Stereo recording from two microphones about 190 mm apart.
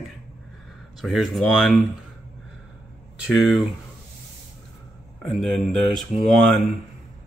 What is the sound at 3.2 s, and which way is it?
Speech, centre (ahead or behind).